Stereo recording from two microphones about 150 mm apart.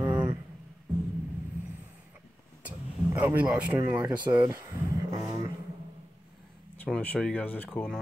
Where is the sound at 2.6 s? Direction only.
10° right (ahead or behind).